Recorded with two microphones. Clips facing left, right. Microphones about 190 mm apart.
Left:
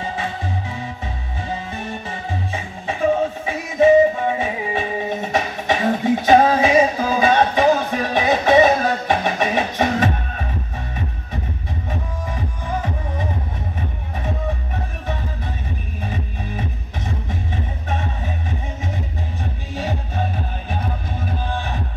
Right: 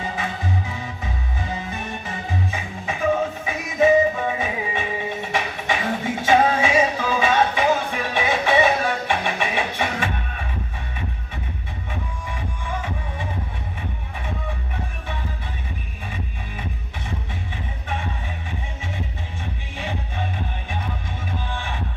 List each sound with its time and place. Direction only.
0.0 s music: 30° left (ahead or behind)
11.9 s music: 40° left (ahead or behind)
19.7 s music: 40° left (ahead or behind)
21.5 s music: 40° left (ahead or behind)